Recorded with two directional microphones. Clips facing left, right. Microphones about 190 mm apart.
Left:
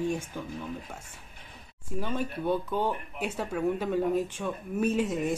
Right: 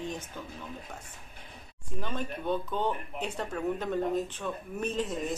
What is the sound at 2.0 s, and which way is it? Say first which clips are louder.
Speech: left 3 dB; 10° left (ahead or behind).